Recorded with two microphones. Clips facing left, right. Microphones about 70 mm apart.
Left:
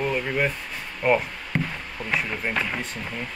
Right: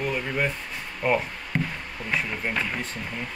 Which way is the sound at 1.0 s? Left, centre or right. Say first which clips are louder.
Left 3 dB; centre.